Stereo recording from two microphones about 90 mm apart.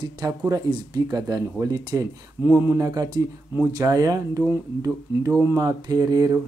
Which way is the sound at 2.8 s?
45° right (ahead or behind).